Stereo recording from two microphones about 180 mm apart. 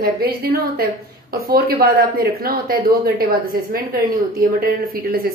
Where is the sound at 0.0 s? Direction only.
55° right (ahead or behind).